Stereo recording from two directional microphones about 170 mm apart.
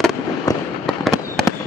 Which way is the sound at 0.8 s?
Centre (ahead or behind).